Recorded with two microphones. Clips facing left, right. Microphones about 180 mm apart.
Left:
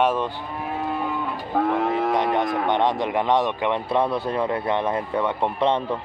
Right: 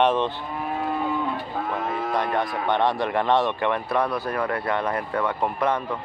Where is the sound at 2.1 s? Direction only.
20° left (ahead or behind).